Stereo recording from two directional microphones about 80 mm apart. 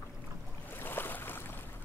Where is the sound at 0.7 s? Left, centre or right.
Left.